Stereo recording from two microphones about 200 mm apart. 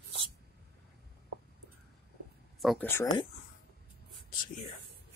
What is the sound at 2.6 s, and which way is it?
Speech, centre (ahead or behind).